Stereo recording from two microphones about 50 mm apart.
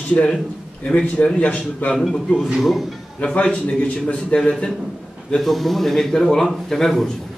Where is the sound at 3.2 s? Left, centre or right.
Left.